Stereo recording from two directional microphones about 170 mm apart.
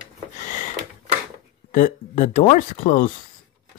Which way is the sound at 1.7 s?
50° left (ahead or behind).